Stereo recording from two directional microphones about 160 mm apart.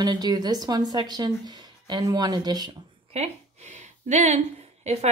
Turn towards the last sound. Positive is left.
turn(degrees=-40)  # may be behind; listen again after turning